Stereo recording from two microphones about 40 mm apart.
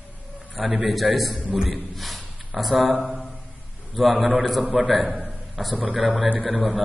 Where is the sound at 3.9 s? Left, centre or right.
Centre.